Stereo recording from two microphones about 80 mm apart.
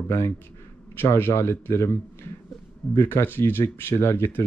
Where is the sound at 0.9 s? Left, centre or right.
Left.